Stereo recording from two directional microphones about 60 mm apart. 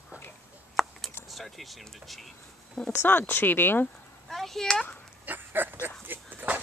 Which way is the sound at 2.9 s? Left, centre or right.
Left.